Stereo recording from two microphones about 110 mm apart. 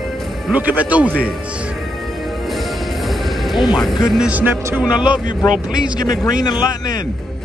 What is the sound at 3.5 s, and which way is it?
Speech, 45° left (ahead or behind).